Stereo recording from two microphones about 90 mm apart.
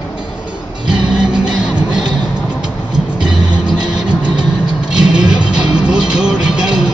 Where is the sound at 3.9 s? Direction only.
10° right (ahead or behind).